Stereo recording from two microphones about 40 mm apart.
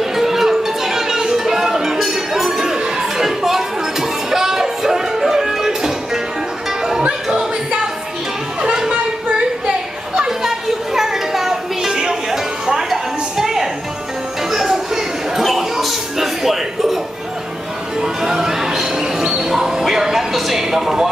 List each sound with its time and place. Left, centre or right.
0.0 s music: centre
7.0 s music: right
10.2 s music: centre
14.5 s a sound: centre
15.4 s music: centre
18.0 s music: centre
19.9 s a sound: centre